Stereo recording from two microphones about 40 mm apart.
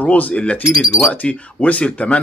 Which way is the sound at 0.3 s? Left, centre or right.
Left.